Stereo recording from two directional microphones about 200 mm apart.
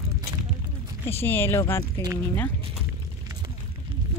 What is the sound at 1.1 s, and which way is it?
Speech, 10° left (ahead or behind).